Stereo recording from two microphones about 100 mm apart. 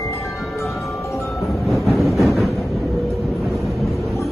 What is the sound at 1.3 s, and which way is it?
Train, centre (ahead or behind).